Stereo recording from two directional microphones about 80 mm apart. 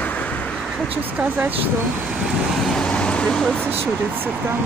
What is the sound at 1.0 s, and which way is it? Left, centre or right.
Speech, right.